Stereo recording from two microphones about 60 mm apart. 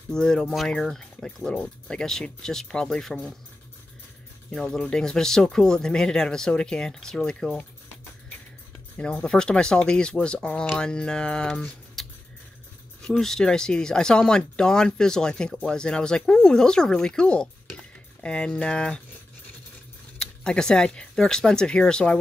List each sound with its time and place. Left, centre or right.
0.1 s speech: centre
4.5 s speech: centre
8.9 s speech: centre
13.1 s speech: centre
20.2 s speech: centre